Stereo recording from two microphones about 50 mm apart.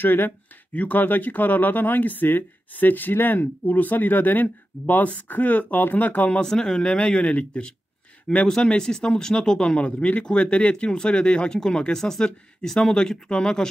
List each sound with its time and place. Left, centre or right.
0.0 s speech: left
6.4 s speech: centre
8.5 s speech: centre